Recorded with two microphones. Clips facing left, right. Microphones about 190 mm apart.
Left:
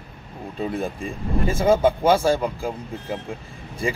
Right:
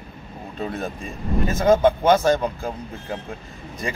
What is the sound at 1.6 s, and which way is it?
Speech, 10° left (ahead or behind).